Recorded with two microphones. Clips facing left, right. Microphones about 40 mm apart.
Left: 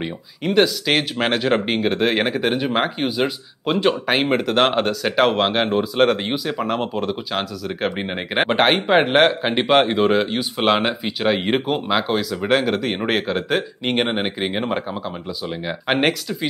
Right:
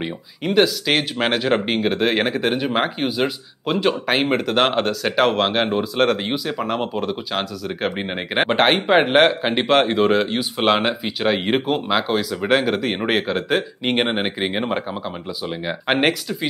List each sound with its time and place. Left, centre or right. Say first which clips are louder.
0.0 s speech: even; centre